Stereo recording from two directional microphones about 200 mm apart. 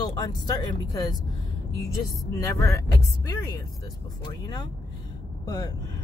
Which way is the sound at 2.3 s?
15° left (ahead or behind).